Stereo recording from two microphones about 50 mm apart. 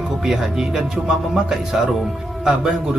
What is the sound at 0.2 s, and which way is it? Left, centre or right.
Speech, centre.